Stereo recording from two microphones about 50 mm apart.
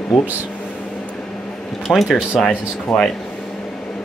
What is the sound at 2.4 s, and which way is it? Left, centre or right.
Speech, left.